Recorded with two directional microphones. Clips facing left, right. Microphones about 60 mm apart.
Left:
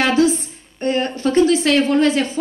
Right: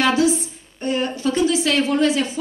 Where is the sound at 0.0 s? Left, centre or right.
Left.